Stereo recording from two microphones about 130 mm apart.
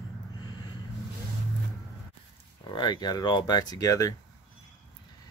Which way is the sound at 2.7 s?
35° left (ahead or behind).